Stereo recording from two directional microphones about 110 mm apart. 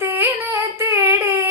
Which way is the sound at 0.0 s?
20° right (ahead or behind).